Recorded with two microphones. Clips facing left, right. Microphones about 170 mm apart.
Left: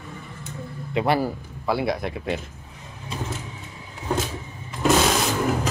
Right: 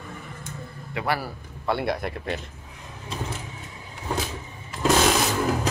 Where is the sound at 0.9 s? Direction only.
20° left (ahead or behind).